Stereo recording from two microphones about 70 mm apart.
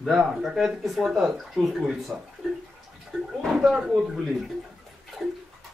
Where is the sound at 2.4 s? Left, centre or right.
Centre.